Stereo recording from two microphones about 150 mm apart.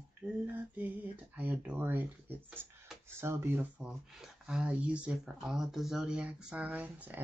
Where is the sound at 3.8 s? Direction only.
5° right (ahead or behind).